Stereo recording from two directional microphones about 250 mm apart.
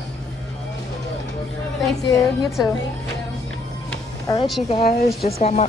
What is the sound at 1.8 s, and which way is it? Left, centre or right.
Speech, centre.